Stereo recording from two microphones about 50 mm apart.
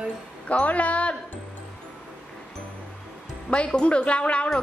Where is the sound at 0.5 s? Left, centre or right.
Left.